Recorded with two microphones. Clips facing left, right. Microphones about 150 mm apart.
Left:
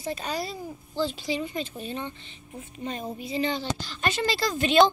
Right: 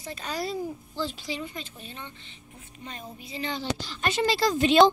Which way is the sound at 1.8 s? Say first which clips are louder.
Left 9 dB; 40° left (ahead or behind).